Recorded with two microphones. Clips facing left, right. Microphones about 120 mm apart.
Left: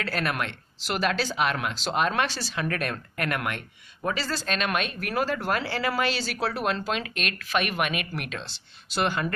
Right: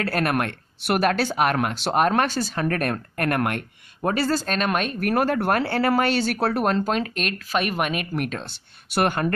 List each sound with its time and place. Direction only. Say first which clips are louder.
0.0 s speech: right 6 dB; 50° right (ahead or behind)